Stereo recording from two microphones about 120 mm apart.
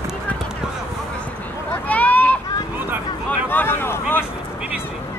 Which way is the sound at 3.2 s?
15° left (ahead or behind).